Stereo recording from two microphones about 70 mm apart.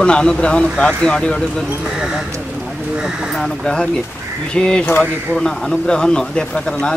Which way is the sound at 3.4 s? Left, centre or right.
Centre.